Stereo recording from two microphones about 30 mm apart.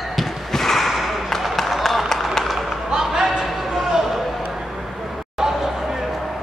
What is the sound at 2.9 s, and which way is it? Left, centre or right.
Music, centre.